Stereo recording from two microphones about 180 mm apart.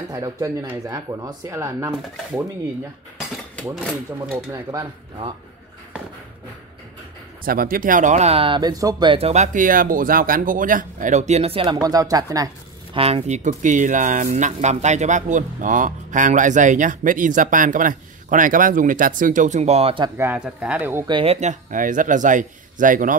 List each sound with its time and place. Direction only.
0.1 s speech: 20° right (ahead or behind)
4.3 s speech: 15° right (ahead or behind)
7.4 s speech: 55° right (ahead or behind); by 12.4 s 20° right (ahead or behind)
12.9 s speech: 35° right (ahead or behind)
20.2 s speech: 10° right (ahead or behind)
21.1 s speech: 30° right (ahead or behind); by 23.1 s 50° right (ahead or behind)